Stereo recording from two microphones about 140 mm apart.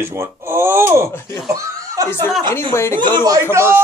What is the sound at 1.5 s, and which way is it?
Chuckle, 25° right (ahead or behind).